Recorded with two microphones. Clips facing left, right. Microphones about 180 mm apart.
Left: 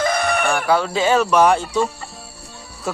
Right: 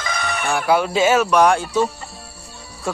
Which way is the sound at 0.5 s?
10° right (ahead or behind).